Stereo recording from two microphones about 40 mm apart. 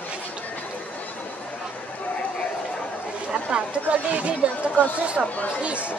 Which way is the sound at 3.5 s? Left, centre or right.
Right.